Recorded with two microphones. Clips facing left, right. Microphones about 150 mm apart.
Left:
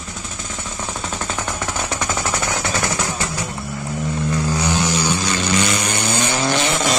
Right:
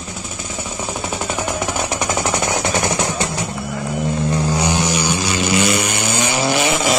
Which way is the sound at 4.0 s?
20° right (ahead or behind).